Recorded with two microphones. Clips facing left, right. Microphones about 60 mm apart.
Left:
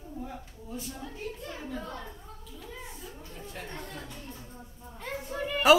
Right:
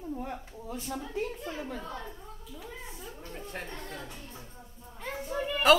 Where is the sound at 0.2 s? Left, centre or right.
Right.